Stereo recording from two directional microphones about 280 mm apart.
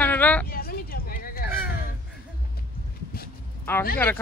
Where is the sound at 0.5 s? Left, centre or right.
Left.